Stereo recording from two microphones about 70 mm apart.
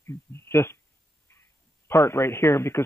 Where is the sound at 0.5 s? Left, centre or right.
Left.